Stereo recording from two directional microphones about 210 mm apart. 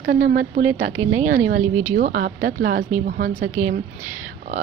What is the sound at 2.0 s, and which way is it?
Speech, 40° right (ahead or behind).